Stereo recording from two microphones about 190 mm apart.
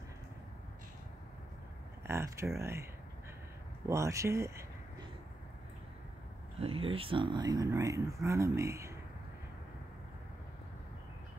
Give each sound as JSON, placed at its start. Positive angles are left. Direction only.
{"t": 2.0, "sound": "speech", "side_deg": -15}
{"t": 6.6, "sound": "speech", "side_deg": -30}